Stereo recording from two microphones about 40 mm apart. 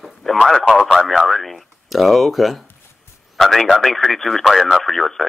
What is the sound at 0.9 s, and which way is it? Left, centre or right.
Speech, centre.